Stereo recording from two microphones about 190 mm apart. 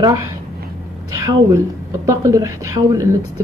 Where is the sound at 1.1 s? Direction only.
15° right (ahead or behind).